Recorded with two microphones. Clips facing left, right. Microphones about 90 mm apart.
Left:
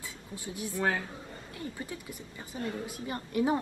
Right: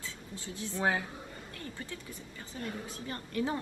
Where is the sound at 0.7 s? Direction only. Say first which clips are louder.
Even; 15° right (ahead or behind).